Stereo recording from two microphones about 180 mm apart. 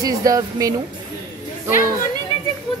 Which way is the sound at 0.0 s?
20° right (ahead or behind).